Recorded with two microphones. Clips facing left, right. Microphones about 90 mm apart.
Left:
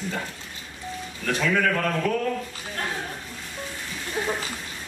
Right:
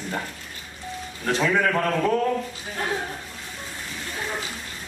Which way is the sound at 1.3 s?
20° right (ahead or behind).